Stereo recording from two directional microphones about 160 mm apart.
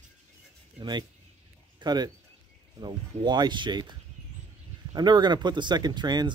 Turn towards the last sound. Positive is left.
turn(degrees=-25)  # may be behind; listen again after turning